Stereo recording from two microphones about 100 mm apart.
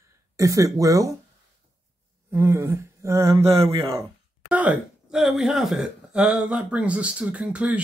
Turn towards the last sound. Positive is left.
turn(degrees=-10)  # may be behind; listen again after turning